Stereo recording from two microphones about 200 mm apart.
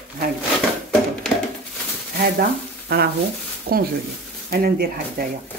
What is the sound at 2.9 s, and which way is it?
A woman's voice, 50° right (ahead or behind).